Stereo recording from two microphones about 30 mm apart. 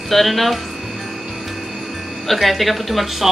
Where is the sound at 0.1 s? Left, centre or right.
Centre.